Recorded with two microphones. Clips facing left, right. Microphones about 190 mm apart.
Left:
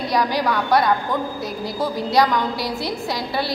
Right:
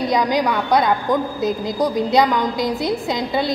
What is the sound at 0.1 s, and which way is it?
A woman's voice, 20° right (ahead or behind).